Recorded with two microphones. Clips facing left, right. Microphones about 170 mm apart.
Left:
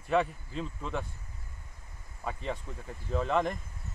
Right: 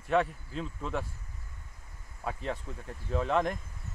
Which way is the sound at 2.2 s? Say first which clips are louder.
Right 1 dB; centre (ahead or behind).